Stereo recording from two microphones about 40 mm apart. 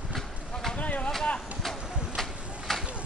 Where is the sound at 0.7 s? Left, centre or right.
Left.